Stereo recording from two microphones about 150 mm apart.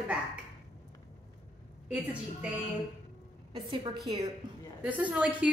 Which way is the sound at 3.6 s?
35° right (ahead or behind).